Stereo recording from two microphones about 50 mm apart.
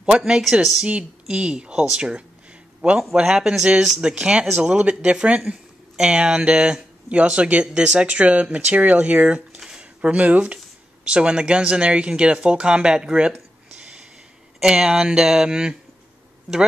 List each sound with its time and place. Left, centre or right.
0.0 s speech: centre
0.8 s a man's voice: right
4.1 s speech: right
9.6 s a sound: centre
11.1 s speech: centre
14.6 s speech: centre